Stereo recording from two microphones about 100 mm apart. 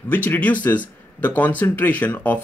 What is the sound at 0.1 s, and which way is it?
Speech, 15° left (ahead or behind).